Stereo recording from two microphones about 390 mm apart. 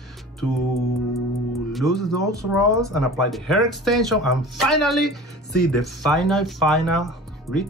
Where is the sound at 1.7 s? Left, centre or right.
Centre.